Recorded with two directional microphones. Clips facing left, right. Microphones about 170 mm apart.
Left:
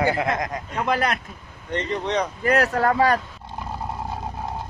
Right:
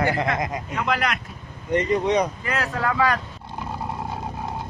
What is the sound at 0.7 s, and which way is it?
Speech, 30° left (ahead or behind).